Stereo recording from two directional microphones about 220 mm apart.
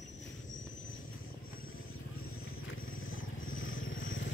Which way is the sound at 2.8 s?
65° left (ahead or behind).